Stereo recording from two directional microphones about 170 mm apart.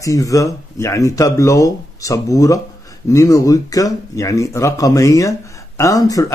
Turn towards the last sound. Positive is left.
turn(degrees=20)  # may be behind; listen again after turning